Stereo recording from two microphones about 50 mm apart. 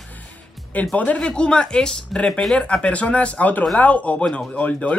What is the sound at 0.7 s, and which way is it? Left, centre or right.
Speech, left.